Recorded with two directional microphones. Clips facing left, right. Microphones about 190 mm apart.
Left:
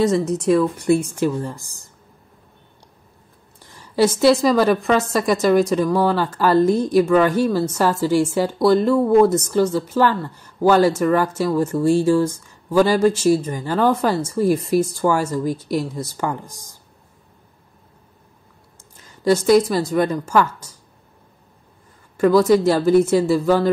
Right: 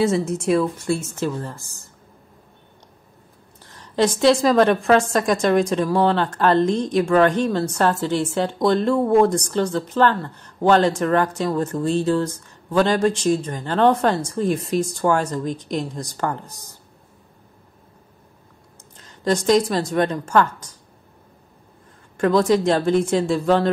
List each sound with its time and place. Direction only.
0.3 s a woman's voice: centre (ahead or behind)
0.7 s a woman's voice: 15° left (ahead or behind)
3.6 s a woman's voice: 10° left (ahead or behind)
18.9 s a woman's voice: 10° left (ahead or behind)
22.1 s a woman's voice: 5° left (ahead or behind)